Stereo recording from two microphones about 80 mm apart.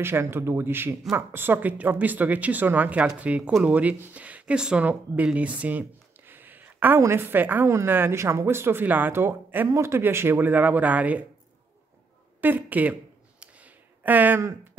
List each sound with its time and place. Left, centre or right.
0.0 s speech: right
12.4 s speech: right
13.4 s a sound: centre